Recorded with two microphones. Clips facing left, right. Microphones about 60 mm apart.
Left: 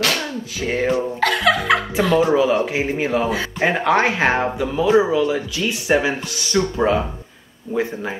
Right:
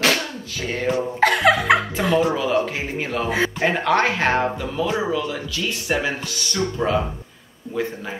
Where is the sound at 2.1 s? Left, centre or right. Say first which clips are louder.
Left 3 dB; centre.